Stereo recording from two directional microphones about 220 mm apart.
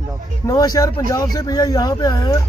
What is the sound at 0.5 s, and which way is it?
A man's voice, 15° left (ahead or behind).